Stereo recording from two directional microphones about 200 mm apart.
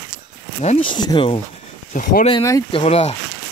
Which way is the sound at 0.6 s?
35° left (ahead or behind).